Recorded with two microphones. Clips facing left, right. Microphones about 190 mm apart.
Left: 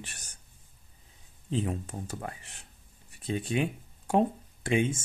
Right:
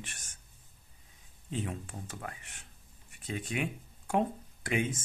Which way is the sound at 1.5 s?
35° left (ahead or behind).